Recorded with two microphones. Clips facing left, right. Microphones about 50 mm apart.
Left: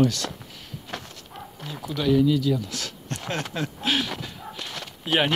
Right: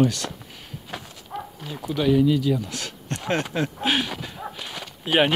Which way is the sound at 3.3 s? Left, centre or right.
Right.